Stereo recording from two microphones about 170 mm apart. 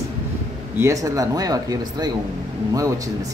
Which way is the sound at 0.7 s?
20° right (ahead or behind).